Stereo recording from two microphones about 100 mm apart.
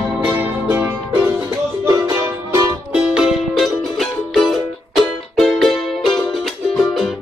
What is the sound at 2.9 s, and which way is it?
Music, 10° right (ahead or behind).